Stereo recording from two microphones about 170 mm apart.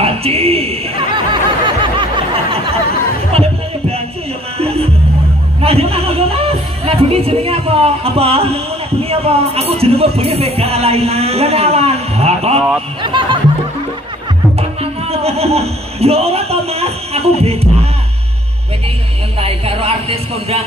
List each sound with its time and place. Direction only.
0.0 s a sound: 35° right (ahead or behind)
4.6 s music: 35° right (ahead or behind)
9.1 s speech: 35° right (ahead or behind)
13.0 s music: 25° right (ahead or behind)
14.6 s music: 35° right (ahead or behind)
19.4 s a sound: 35° right (ahead or behind)